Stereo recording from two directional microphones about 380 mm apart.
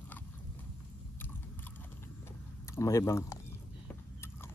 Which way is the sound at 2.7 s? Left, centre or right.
Centre.